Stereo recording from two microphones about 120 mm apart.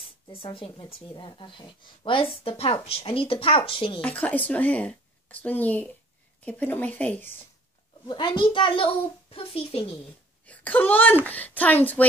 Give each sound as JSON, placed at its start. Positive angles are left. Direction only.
{"t": 0.3, "sound": "a woman's voice", "side_deg": 45}
{"t": 4.0, "sound": "a woman's voice", "side_deg": 15}
{"t": 8.1, "sound": "a woman's voice", "side_deg": 40}
{"t": 10.4, "sound": "a woman's voice", "side_deg": 10}